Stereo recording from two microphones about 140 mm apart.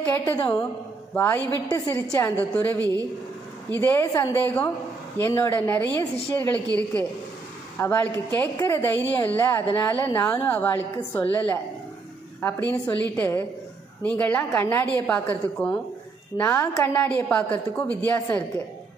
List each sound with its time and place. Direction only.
0.0 s speech: 15° left (ahead or behind)
2.2 s a woman's voice: 10° left (ahead or behind)
7.8 s a woman's voice: 15° left (ahead or behind)